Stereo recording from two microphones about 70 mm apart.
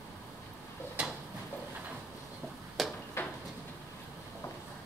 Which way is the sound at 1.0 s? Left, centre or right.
Centre.